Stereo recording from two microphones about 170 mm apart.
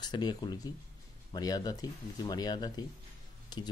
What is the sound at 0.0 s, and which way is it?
Speech, 25° left (ahead or behind).